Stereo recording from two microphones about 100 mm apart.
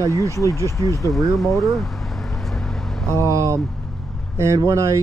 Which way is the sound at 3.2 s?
30° right (ahead or behind).